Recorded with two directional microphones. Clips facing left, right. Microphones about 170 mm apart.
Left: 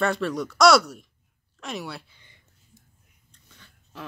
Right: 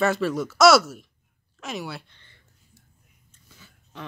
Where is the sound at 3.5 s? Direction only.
Centre (ahead or behind).